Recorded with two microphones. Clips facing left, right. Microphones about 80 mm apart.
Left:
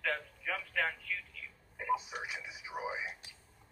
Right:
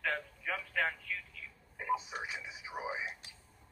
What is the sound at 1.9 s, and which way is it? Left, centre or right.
Television, centre.